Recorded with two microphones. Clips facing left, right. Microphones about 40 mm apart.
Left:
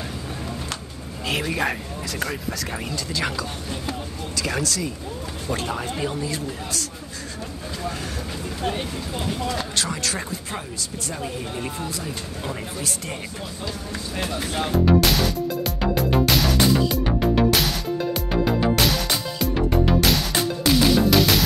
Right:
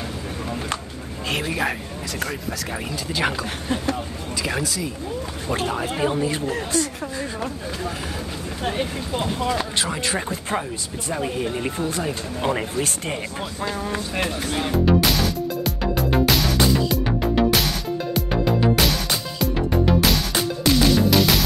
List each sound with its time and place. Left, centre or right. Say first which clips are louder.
1.3 s a man's voice: even; centre
3.1 s speech: right 4 dB; right
4.4 s speech: even; centre
5.9 s speech: right 5 dB; right
8.9 s speech: right 3 dB; right
11.9 s speech: right 5 dB; right
14.3 s speech: even; centre
15.6 s music: even; centre